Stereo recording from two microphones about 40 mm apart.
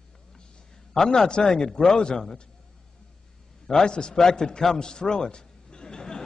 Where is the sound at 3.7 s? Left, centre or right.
Centre.